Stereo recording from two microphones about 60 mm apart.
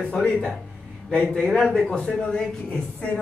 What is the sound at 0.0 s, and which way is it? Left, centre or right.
A woman's voice, centre.